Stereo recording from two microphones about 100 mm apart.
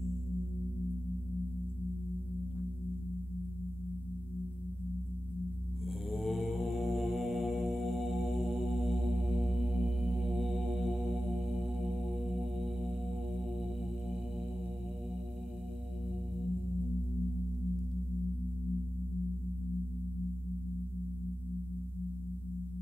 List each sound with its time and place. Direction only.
5.9 s mantra: centre (ahead or behind)